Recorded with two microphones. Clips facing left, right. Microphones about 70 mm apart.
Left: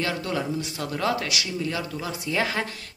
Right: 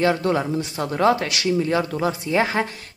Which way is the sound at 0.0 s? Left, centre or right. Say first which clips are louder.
Right 8 dB; right.